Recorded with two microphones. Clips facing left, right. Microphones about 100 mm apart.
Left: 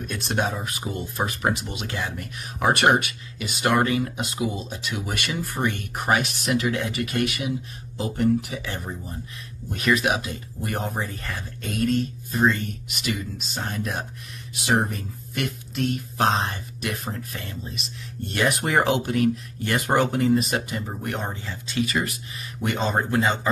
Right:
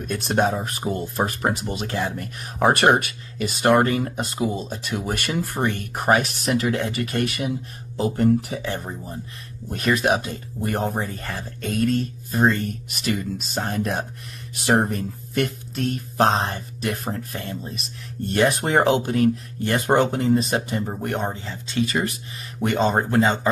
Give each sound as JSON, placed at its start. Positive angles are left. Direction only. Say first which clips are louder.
{"t": 0.0, "sound": "speech", "louder": "right 5 dB", "side_deg": -40}